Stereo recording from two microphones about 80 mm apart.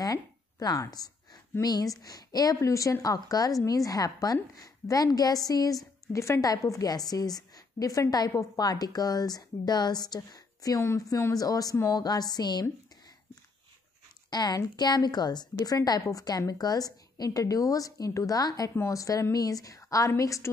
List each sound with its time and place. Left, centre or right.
0.0 s a sound: left
1.6 s a woman's voice: left
11.9 s a woman's voice: left
14.3 s a woman's voice: left